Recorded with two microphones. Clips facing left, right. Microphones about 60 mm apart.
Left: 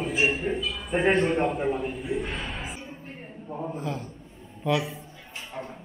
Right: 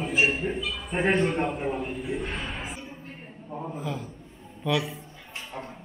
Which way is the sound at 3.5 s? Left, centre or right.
Centre.